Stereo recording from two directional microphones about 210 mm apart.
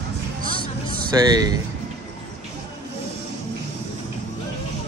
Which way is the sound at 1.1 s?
15° right (ahead or behind).